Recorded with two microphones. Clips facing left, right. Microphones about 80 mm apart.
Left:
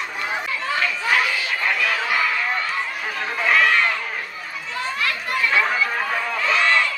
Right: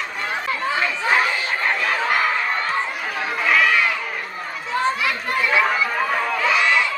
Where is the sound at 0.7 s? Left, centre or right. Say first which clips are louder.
Right 1 dB; right.